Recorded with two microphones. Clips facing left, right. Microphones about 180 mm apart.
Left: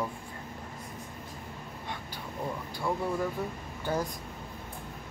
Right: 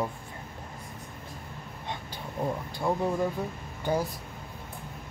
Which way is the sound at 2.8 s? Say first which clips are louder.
Right 3 dB; 25° right (ahead or behind).